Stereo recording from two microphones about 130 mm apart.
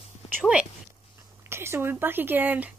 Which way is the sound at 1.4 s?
20° right (ahead or behind).